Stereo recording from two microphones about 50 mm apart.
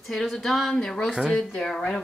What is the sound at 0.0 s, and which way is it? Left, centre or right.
Speech, centre.